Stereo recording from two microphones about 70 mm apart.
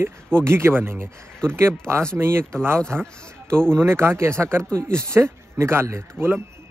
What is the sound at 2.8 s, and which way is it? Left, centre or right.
Speech, centre.